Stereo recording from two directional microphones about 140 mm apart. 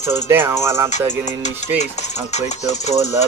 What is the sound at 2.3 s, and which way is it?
Speech, 55° left (ahead or behind).